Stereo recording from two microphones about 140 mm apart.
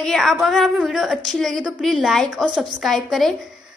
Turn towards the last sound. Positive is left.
turn(degrees=0)  # may be behind; listen again after turning